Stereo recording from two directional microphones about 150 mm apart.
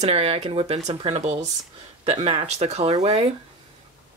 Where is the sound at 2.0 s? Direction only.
35° right (ahead or behind).